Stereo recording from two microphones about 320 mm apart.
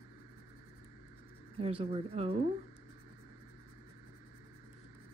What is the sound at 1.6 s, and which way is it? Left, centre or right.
Speech, centre.